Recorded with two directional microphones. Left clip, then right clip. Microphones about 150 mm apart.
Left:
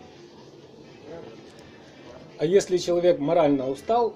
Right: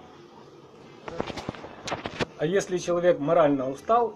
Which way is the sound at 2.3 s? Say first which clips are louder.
Left 6 dB; 20° left (ahead or behind).